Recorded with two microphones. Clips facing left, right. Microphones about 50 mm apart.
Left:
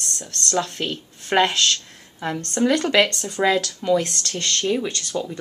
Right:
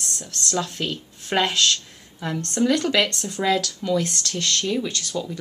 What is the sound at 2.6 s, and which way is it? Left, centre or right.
Speech, centre.